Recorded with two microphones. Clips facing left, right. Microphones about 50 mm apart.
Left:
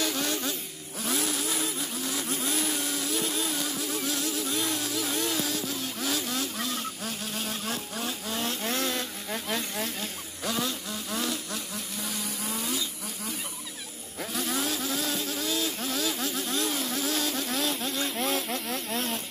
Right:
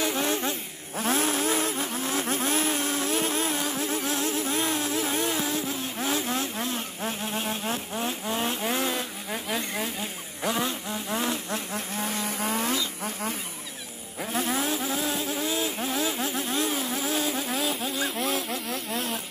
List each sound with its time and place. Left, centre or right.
0.0 s vehicle: right
10.4 s insect: right
14.3 s vehicle: right; by 19.2 s centre